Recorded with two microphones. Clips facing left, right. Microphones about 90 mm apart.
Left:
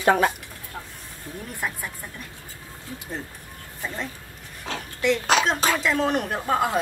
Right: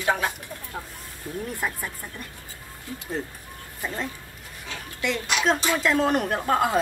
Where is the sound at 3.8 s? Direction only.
Centre (ahead or behind).